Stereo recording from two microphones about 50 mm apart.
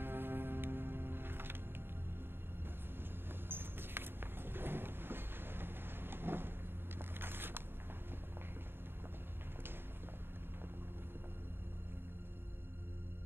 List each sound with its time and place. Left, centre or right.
0.0 s music: right
3.4 s a sound: right
7.0 s vehicle: right